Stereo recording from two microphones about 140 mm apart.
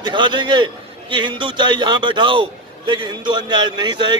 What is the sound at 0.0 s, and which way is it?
A man's voice, 35° right (ahead or behind).